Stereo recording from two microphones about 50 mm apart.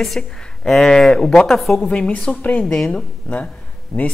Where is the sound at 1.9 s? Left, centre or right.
Centre.